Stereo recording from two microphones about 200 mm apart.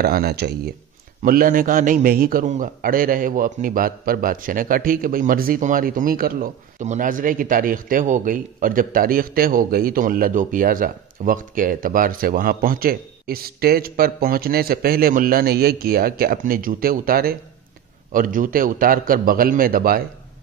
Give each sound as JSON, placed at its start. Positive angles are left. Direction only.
{"t": 0.0, "sound": "a man's voice", "side_deg": -50}